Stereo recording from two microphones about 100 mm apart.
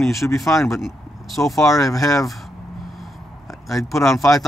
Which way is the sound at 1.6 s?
35° left (ahead or behind).